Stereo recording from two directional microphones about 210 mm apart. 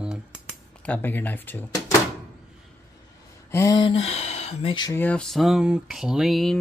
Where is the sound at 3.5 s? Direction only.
15° left (ahead or behind).